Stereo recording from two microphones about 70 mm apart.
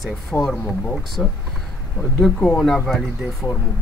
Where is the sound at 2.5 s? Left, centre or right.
Centre.